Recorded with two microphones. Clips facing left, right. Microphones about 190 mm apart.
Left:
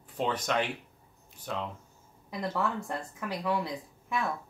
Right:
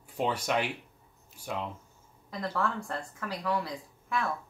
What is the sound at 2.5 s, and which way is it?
Speech, 20° left (ahead or behind).